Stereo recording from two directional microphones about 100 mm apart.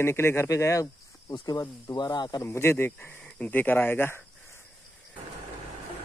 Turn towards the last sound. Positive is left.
turn(degrees=20)  # may be behind; listen again after turning